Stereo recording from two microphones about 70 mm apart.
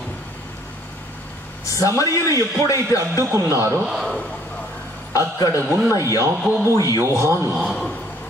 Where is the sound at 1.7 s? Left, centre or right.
Left.